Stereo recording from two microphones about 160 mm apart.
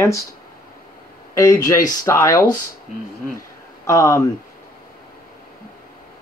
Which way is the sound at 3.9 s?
20° left (ahead or behind).